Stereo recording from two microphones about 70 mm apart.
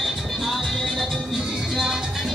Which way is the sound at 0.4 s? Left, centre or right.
Centre.